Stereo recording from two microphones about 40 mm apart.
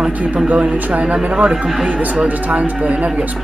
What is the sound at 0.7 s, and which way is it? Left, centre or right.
Speech, right.